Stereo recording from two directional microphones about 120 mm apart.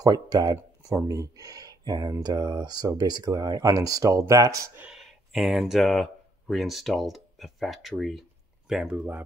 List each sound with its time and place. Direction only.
0.0 s speech: 35° right (ahead or behind)
4.9 s speech: centre (ahead or behind)